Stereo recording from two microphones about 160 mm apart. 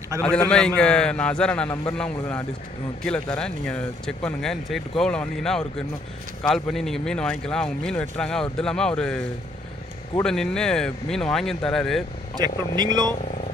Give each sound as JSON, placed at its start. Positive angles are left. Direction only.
{"t": 0.2, "sound": "a man's voice", "side_deg": 5}
{"t": 10.2, "sound": "speech", "side_deg": 5}
{"t": 12.4, "sound": "speech", "side_deg": -25}